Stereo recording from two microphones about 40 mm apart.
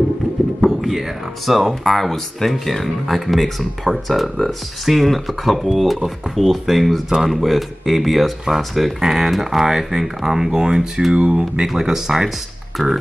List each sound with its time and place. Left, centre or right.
0.6 s a sound: centre
1.4 s speech: centre; by 11.6 s right
11.6 s speech: centre
12.8 s music: centre